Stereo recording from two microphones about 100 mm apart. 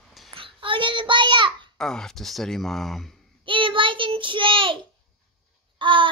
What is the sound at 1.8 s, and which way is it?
Speech, 5° left (ahead or behind).